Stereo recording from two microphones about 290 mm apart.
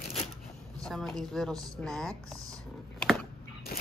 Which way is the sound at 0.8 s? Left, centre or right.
Centre.